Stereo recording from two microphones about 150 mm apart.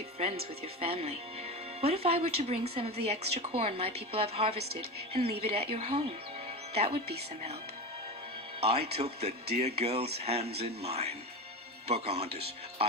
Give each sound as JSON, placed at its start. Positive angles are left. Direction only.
{"t": 0.7, "sound": "speech", "side_deg": -40}
{"t": 8.5, "sound": "a man's voice", "side_deg": -45}